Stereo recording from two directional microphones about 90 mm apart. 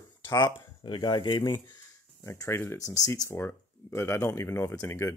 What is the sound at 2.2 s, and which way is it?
Speech, 35° left (ahead or behind).